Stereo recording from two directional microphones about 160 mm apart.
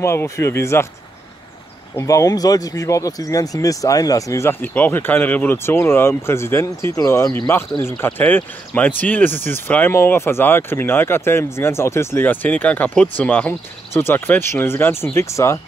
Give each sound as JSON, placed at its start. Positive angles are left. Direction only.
{"t": 0.0, "sound": "speech", "side_deg": 15}
{"t": 2.0, "sound": "speech", "side_deg": 20}